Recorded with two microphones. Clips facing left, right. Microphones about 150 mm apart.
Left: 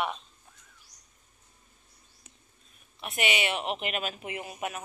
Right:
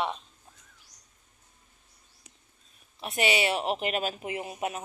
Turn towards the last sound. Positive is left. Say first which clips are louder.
# right 3 dB
turn(degrees=-30)  # may be behind; listen again after turning